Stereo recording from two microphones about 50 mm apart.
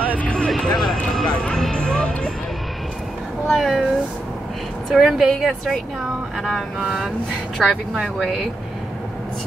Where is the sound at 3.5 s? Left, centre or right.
Centre.